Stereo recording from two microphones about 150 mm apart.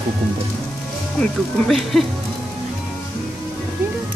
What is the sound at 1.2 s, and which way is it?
Speech, centre (ahead or behind).